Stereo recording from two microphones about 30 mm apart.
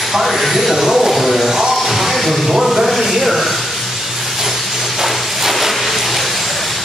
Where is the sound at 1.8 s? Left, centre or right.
Centre.